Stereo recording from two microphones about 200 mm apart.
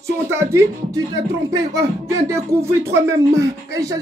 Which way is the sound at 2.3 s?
15° right (ahead or behind).